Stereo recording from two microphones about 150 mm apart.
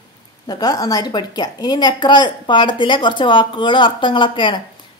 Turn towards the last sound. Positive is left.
turn(degrees=30)  # may be behind; listen again after turning